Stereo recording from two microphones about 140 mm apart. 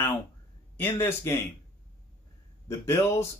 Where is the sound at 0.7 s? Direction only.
15° left (ahead or behind).